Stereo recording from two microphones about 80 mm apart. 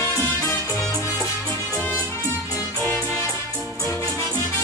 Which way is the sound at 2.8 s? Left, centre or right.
Left.